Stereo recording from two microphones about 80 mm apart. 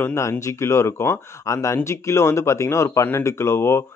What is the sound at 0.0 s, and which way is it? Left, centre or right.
Speech, left.